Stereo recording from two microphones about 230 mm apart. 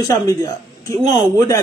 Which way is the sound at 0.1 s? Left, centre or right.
Centre.